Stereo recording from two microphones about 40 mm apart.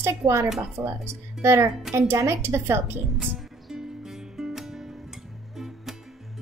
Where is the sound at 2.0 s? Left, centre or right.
Right.